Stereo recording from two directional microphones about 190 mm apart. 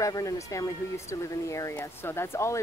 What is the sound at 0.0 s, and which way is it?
Speech, 15° left (ahead or behind).